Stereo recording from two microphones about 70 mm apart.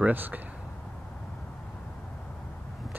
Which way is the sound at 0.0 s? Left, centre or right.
Right.